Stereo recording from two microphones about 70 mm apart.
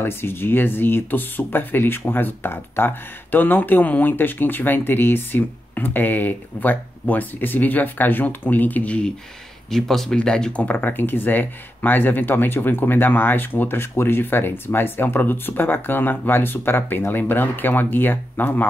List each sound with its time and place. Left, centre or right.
0.0 s speech: left
9.7 s speech: centre; by 18.7 s left